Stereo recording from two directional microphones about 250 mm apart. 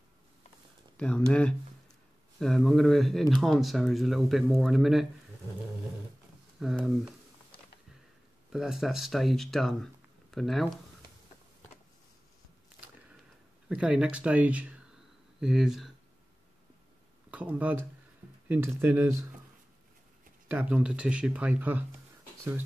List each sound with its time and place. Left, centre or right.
0.9 s speech: centre
6.6 s speech: centre
8.5 s speech: centre
13.7 s speech: centre
17.3 s speech: centre
20.4 s speech: centre